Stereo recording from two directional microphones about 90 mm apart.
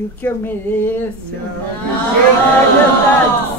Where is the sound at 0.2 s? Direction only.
25° left (ahead or behind).